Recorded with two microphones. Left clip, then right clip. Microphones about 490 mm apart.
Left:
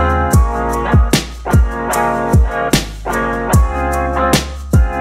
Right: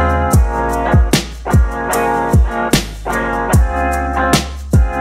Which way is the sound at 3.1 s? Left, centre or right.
Left.